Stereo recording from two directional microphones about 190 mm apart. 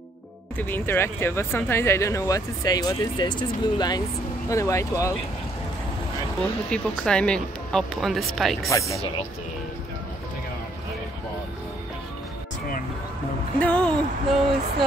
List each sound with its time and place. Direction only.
0.6 s speech: 10° left (ahead or behind)
6.7 s speech: 5° left (ahead or behind)
8.6 s speech: 15° left (ahead or behind)
13.6 s speech: 5° left (ahead or behind)